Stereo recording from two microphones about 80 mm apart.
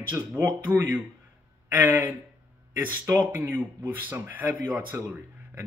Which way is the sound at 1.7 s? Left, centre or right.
Right.